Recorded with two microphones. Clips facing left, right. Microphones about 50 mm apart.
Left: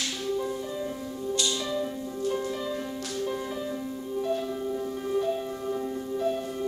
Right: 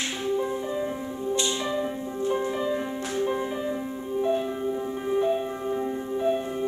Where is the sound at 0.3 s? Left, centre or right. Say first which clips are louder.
Right 4 dB; right.